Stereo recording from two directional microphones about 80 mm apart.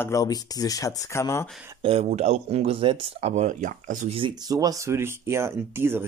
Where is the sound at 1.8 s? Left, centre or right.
Right.